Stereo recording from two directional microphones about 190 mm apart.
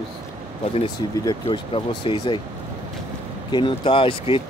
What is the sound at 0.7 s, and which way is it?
Speech, 30° left (ahead or behind).